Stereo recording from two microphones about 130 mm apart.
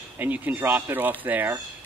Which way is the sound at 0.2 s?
15° right (ahead or behind).